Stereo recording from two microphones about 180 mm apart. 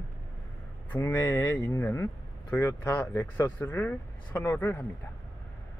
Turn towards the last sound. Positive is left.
turn(degrees=10)  # may be behind; listen again after turning